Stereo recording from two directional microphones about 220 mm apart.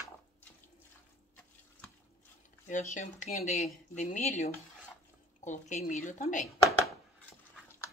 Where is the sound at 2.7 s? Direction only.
35° left (ahead or behind).